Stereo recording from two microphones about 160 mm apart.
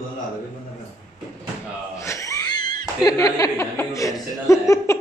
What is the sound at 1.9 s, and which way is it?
A man's voice, 20° left (ahead or behind).